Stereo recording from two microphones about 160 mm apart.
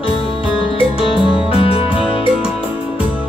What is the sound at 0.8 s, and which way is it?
Music, 35° left (ahead or behind).